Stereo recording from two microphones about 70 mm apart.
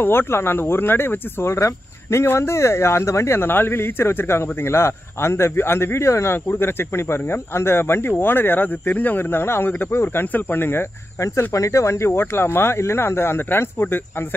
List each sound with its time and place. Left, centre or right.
0.0 s speech: left